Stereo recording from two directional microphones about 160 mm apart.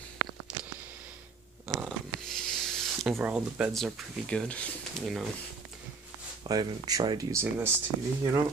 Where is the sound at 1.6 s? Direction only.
Centre (ahead or behind).